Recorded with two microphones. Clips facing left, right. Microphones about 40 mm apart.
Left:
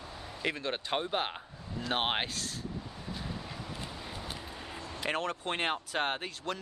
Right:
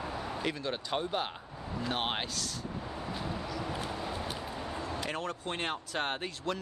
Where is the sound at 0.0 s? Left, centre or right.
Right.